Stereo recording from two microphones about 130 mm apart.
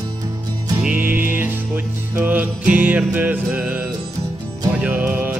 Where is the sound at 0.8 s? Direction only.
15° right (ahead or behind).